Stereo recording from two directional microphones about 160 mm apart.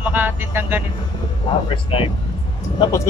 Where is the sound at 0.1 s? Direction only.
15° right (ahead or behind).